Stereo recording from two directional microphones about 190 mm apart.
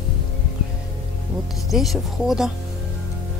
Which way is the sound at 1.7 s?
Centre (ahead or behind).